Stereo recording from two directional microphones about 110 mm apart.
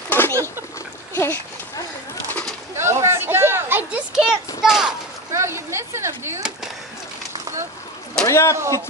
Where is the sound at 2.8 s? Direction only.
25° right (ahead or behind).